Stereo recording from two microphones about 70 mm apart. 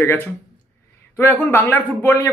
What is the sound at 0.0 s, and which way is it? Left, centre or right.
Speech, left.